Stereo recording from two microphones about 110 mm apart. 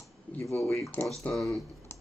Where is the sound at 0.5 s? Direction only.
25° left (ahead or behind).